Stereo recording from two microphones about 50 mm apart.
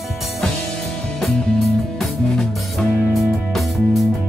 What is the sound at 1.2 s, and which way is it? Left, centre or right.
Music, centre.